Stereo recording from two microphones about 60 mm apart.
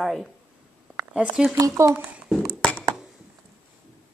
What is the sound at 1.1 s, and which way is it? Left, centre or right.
Speech, centre.